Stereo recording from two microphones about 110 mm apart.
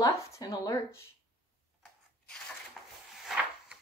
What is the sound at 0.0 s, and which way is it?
Speech, 30° left (ahead or behind).